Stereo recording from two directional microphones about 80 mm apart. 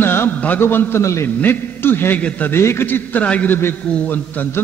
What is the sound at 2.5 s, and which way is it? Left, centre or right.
A man's voice, left.